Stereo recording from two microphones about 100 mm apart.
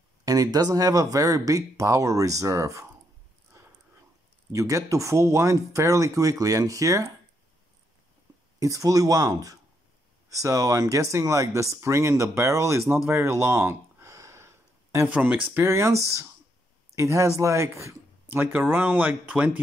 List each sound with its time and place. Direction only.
0.2 s speech: 35° right (ahead or behind)
4.5 s speech: 30° right (ahead or behind)
8.5 s speech: 35° right (ahead or behind)
15.0 s speech: 15° right (ahead or behind)
15.6 s speech: 25° right (ahead or behind)
16.9 s speech: 30° right (ahead or behind)
18.3 s speech: 20° right (ahead or behind)